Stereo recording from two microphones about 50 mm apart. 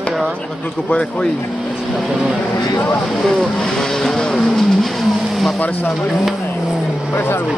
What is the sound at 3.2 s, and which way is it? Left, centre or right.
Speech, centre.